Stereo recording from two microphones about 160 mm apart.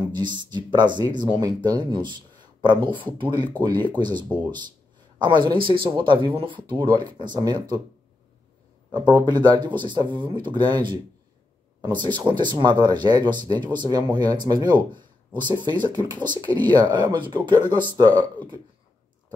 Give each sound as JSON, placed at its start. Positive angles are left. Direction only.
{"t": 0.0, "sound": "speech", "side_deg": -30}
{"t": 8.9, "sound": "speech", "side_deg": -30}